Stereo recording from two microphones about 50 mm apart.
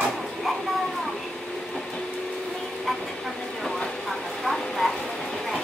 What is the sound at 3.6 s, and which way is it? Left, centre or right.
Vehicle, centre.